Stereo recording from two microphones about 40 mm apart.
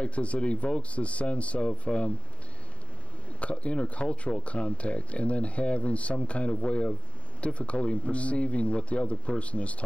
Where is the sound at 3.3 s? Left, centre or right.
Left.